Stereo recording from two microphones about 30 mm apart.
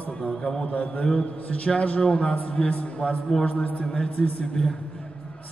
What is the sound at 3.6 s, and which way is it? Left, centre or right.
Speech, left.